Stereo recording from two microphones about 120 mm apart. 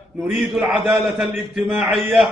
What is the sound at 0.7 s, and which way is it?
Speech, 15° right (ahead or behind).